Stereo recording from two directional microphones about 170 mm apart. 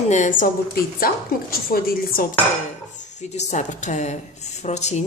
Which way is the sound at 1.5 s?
60° left (ahead or behind).